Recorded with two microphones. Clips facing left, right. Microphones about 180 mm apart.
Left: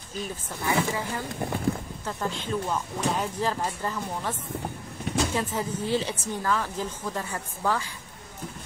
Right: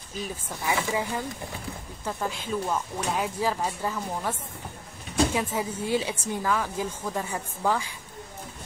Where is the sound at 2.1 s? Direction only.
10° right (ahead or behind).